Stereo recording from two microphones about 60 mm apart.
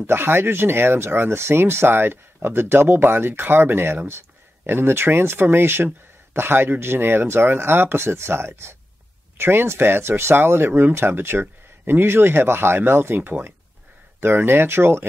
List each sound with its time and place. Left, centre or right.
0.0 s speech: right